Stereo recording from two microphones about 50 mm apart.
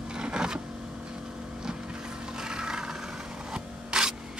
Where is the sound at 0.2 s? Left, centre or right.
Centre.